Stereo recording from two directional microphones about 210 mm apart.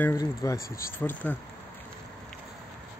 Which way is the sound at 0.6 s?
45° left (ahead or behind).